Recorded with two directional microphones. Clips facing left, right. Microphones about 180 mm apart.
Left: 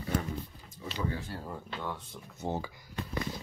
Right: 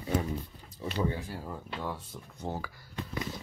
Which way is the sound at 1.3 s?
5° right (ahead or behind).